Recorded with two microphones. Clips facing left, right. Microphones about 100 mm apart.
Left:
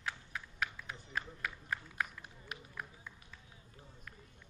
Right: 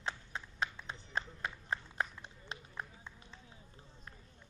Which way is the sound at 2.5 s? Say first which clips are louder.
Right 1 dB; 25° right (ahead or behind).